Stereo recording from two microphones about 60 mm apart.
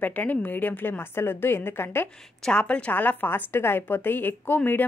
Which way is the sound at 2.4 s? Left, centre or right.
Centre.